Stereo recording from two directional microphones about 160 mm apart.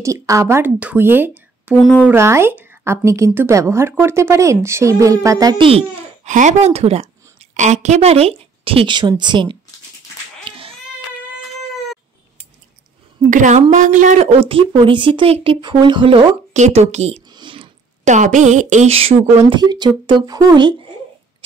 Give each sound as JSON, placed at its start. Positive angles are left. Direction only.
{"t": 0.0, "sound": "a woman's voice", "side_deg": -20}
{"t": 5.7, "sound": "babbling", "side_deg": -40}
{"t": 6.3, "sound": "a woman's voice", "side_deg": -45}
{"t": 10.4, "sound": "cat", "side_deg": -35}
{"t": 13.3, "sound": "speech", "side_deg": -50}
{"t": 16.5, "sound": "speech", "side_deg": -45}
{"t": 17.3, "sound": "a sound", "side_deg": -30}
{"t": 18.0, "sound": "speech", "side_deg": -50}
{"t": 19.6, "sound": "speech", "side_deg": -25}